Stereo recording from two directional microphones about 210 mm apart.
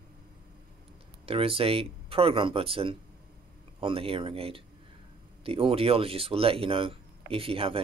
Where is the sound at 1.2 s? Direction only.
25° right (ahead or behind).